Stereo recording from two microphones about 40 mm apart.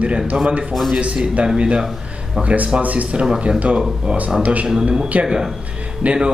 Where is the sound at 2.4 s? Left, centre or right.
Right.